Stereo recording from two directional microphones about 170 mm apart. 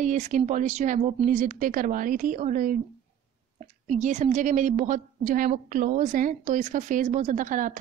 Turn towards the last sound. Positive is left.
turn(degrees=-50)  # may be behind; listen again after turning